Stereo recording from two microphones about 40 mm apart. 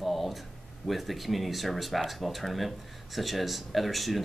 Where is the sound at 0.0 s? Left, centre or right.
Centre.